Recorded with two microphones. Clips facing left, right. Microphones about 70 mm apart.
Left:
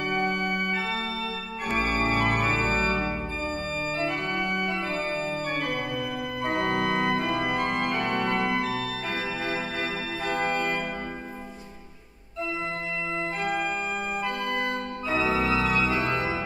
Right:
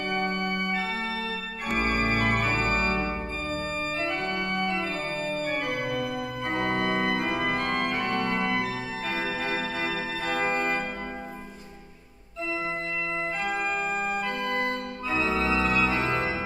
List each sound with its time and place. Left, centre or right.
0.1 s organ: centre
2.9 s organ: centre
14.7 s organ: centre